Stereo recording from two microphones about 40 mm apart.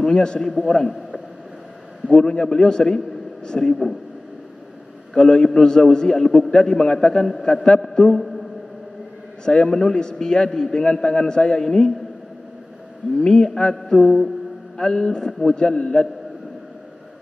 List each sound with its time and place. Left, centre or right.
0.0 s a man's voice: centre
2.1 s a man's voice: centre
5.1 s a man's voice: centre
9.4 s a man's voice: centre
13.2 s a man's voice: centre
14.8 s a man's voice: centre